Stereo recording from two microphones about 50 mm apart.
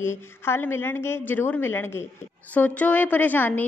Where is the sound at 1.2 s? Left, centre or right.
Left.